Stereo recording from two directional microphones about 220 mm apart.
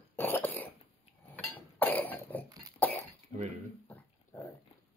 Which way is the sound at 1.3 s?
10° left (ahead or behind).